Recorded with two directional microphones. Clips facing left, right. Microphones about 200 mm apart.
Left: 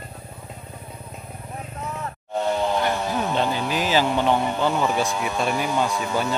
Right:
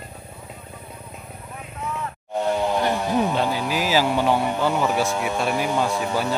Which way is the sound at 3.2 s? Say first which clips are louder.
Right 2 dB; 10° right (ahead or behind).